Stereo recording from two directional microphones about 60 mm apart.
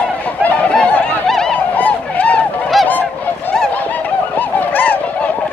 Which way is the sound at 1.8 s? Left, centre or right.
Left.